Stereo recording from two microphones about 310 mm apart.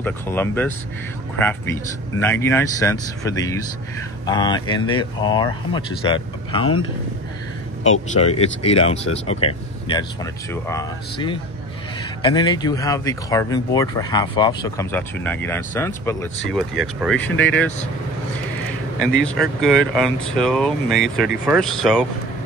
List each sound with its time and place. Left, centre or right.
0.0 s speech: centre
7.8 s speech: left; by 17.6 s centre
19.1 s speech: centre